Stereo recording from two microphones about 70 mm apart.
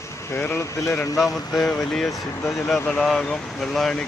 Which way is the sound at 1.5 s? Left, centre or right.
Centre.